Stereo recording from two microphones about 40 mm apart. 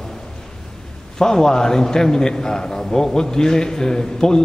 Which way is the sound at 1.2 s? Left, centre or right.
Centre.